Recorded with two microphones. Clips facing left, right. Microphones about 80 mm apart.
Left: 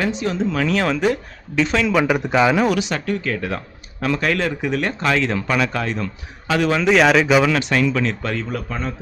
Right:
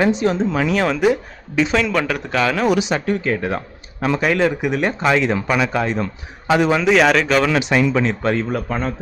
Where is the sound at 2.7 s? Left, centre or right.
Right.